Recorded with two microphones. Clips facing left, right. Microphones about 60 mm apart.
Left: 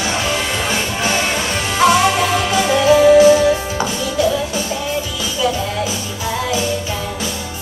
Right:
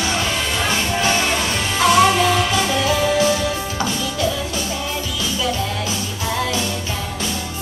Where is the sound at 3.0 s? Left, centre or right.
Centre.